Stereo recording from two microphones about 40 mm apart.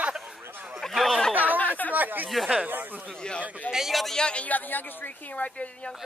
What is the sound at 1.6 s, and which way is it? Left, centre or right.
Speech, left.